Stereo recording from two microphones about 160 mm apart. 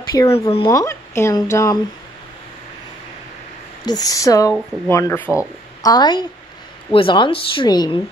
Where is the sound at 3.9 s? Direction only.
25° left (ahead or behind).